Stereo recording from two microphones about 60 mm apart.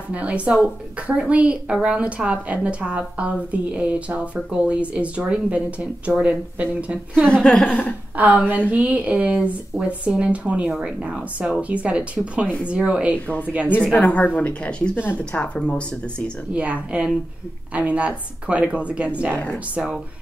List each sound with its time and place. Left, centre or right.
0.1 s a woman's voice: right
7.2 s a woman's voice: centre
7.6 s speech: left
8.2 s a woman's voice: right
13.9 s speech: left
16.5 s a woman's voice: right